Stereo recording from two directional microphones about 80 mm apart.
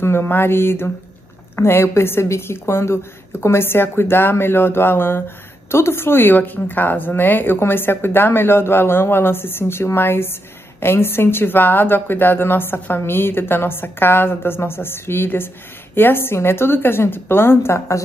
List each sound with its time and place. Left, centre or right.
0.0 s a woman's voice: left